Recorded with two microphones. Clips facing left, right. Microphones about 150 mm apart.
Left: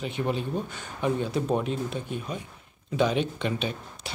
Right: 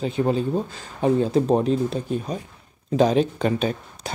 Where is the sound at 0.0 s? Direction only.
35° right (ahead or behind).